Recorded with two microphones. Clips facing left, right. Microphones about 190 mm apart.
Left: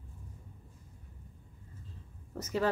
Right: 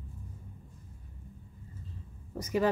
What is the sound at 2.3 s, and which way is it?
Speech, 10° right (ahead or behind).